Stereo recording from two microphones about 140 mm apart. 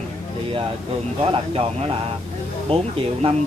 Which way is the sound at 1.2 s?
40° right (ahead or behind).